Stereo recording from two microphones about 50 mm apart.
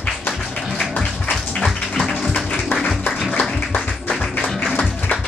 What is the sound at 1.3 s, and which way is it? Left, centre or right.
Music, centre.